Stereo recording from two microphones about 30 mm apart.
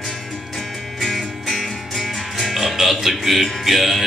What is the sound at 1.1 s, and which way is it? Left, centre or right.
Music, centre.